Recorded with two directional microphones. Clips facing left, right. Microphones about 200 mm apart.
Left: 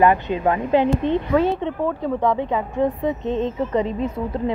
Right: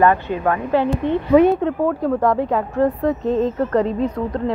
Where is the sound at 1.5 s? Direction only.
Centre (ahead or behind).